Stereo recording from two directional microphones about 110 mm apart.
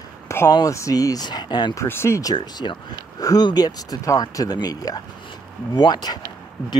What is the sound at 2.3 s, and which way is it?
Speech, 45° left (ahead or behind).